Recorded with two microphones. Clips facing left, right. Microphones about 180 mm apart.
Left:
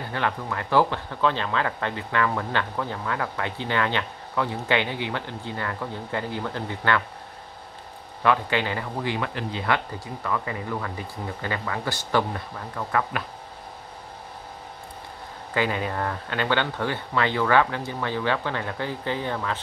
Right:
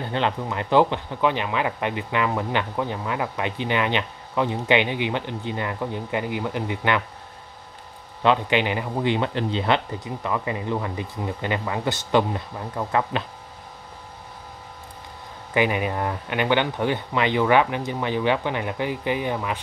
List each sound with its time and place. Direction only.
0.1 s speech: 20° right (ahead or behind)
8.2 s speech: 20° right (ahead or behind)
15.5 s speech: 15° right (ahead or behind)